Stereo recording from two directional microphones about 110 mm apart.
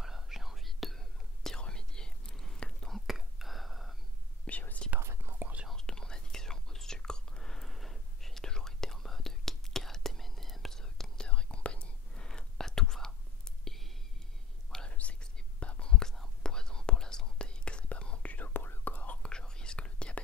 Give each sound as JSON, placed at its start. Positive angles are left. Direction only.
{"t": 0.0, "sound": "whispering", "side_deg": -5}
{"t": 4.5, "sound": "whispering", "side_deg": 15}
{"t": 5.0, "sound": "whispering", "side_deg": -20}
{"t": 5.7, "sound": "whispering", "side_deg": 5}
{"t": 14.7, "sound": "whispering", "side_deg": 10}